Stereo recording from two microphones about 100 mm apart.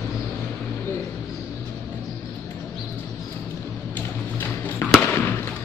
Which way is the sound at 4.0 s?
20° left (ahead or behind).